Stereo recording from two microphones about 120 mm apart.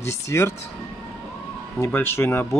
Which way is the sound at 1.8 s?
20° left (ahead or behind).